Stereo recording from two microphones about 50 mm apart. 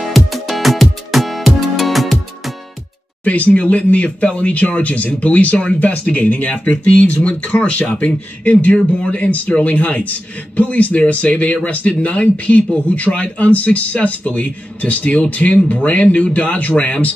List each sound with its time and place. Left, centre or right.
0.0 s music: centre
3.3 s speech: left
8.7 s speech: centre
9.6 s speech: left